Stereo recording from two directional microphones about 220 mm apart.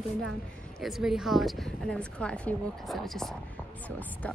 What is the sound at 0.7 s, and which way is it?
Speech, centre (ahead or behind).